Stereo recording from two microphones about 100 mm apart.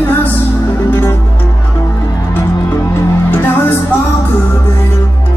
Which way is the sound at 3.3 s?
20° left (ahead or behind).